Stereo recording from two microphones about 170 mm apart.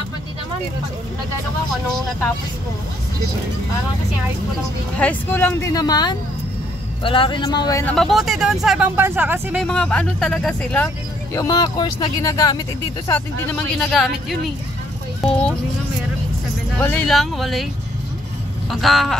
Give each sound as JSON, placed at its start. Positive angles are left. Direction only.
{"t": 4.9, "sound": "speech", "side_deg": 10}
{"t": 7.8, "sound": "speech", "side_deg": 5}
{"t": 9.6, "sound": "speech", "side_deg": 5}
{"t": 11.3, "sound": "speech", "side_deg": 20}
{"t": 13.1, "sound": "speech", "side_deg": 10}
{"t": 16.7, "sound": "speech", "side_deg": 5}
{"t": 18.7, "sound": "speech", "side_deg": 0}